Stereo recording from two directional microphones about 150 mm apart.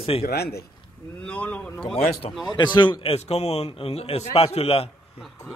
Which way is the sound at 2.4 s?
30° left (ahead or behind).